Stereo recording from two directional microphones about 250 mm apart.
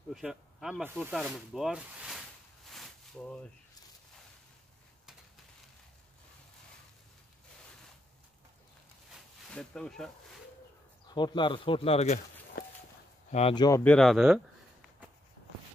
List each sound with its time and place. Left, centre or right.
0.1 s speech: centre
9.1 s a sound: centre
11.1 s speech: centre
13.3 s speech: left; by 14.4 s centre